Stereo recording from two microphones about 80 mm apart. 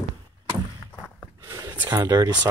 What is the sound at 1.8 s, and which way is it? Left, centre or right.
Speech, right.